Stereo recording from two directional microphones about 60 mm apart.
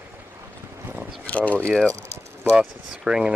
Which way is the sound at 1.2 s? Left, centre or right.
Left.